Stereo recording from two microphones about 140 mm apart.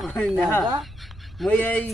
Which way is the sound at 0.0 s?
5° left (ahead or behind).